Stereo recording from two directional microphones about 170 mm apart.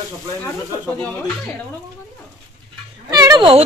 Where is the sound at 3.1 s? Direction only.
20° right (ahead or behind).